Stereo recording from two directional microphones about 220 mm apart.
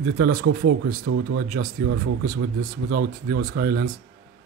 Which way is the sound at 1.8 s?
45° right (ahead or behind).